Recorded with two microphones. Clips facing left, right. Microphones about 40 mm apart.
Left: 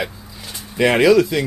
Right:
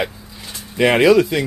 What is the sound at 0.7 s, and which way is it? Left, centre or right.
Speech, centre.